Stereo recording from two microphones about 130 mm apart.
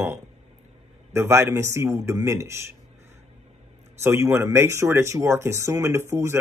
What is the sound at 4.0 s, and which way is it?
Speech, 20° right (ahead or behind).